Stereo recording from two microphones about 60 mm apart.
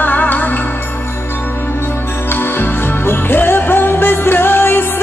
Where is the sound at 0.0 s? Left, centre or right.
Left.